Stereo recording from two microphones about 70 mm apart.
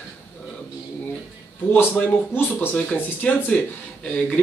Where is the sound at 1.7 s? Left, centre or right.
Left.